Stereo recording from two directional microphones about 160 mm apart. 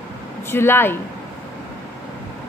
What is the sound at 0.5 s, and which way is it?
Speech, 15° left (ahead or behind).